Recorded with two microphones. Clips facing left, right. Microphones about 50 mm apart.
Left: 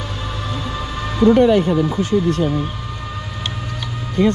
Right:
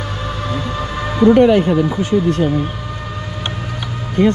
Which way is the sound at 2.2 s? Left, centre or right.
Right.